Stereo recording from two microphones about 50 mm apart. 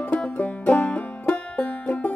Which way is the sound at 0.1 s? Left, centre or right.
Left.